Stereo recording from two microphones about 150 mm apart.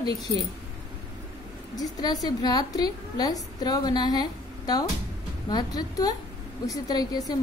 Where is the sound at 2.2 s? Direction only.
25° left (ahead or behind).